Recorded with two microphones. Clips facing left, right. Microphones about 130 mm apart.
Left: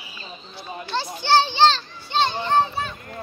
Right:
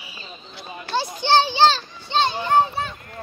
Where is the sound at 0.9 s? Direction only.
15° right (ahead or behind).